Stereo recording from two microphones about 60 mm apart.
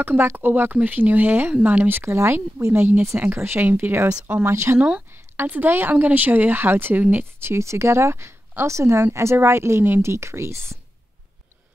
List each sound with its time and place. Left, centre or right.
0.0 s speech: right
2.0 s speech: right
7.3 s speech: right